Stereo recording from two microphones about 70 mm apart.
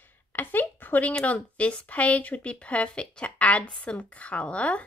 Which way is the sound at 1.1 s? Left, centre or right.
Centre.